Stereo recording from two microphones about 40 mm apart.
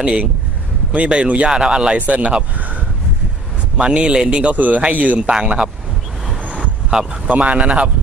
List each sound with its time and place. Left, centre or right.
0.0 s speech: right
1.6 s speech: right
2.0 s speech: right
3.7 s speech: right
4.6 s speech: right
6.5 s vehicle: right
7.2 s speech: right